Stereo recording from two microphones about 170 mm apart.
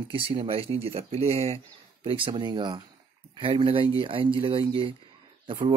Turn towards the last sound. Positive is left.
turn(degrees=-30)  # may be behind; listen again after turning